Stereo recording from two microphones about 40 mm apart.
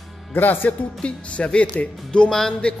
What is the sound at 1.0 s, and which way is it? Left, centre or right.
Speech, left.